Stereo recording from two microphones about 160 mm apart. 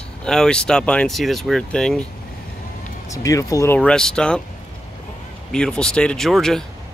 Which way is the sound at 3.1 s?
20° left (ahead or behind).